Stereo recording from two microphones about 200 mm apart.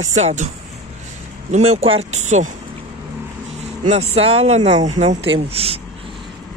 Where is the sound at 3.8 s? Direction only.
35° right (ahead or behind).